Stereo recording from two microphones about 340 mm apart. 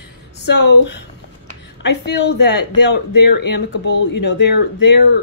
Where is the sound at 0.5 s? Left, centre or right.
Left.